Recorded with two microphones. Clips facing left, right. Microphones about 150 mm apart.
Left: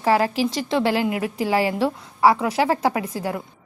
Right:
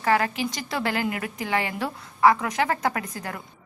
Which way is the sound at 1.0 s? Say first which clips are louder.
Left 6 dB; 10° left (ahead or behind).